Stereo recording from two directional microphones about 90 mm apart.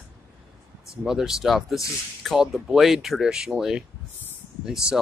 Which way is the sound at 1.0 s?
5° right (ahead or behind).